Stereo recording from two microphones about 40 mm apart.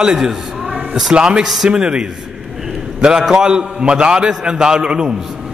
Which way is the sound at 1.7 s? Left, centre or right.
Right.